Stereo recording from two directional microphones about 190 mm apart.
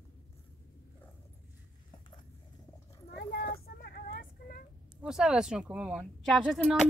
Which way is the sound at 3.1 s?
55° left (ahead or behind).